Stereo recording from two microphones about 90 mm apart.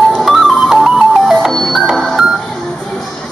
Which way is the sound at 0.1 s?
Centre (ahead or behind).